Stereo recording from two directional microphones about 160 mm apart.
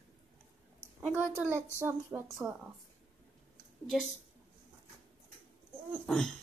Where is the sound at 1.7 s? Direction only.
15° right (ahead or behind).